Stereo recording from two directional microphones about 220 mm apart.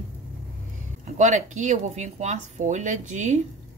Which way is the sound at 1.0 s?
35° right (ahead or behind).